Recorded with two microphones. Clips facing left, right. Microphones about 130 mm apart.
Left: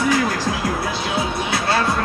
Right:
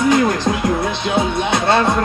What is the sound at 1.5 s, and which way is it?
Music, 20° right (ahead or behind).